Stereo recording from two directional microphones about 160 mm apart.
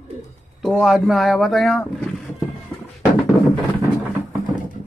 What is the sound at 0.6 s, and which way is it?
Speech, centre (ahead or behind).